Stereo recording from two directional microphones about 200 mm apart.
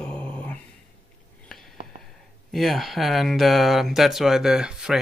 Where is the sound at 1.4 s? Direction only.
Centre (ahead or behind).